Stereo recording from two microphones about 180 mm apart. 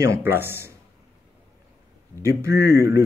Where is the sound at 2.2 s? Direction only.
15° right (ahead or behind).